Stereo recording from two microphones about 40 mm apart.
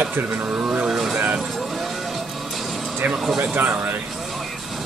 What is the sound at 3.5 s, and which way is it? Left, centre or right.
Speech, right.